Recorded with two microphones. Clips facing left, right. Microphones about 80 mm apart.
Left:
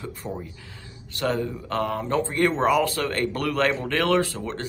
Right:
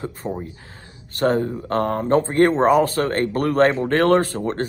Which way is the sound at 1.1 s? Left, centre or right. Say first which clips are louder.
Right 6 dB; right.